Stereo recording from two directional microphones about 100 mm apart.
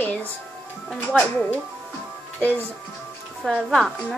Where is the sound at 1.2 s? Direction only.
15° left (ahead or behind).